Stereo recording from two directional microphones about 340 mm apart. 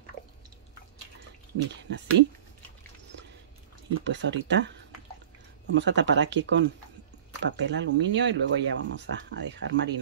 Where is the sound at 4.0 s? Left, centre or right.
Right.